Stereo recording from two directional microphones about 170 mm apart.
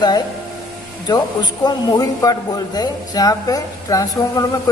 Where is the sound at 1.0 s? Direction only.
25° left (ahead or behind).